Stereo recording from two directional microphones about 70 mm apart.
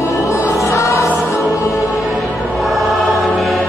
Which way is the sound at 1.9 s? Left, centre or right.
Centre.